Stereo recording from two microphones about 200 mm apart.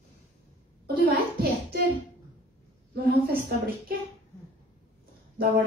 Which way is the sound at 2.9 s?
50° right (ahead or behind).